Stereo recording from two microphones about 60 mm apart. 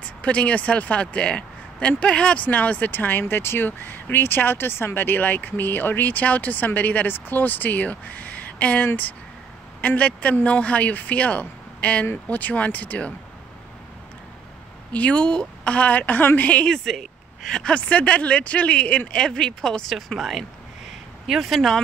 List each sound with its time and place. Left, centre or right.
0.2 s speech: left
14.9 s speech: left
16.6 s speech: centre
19.9 s speech: centre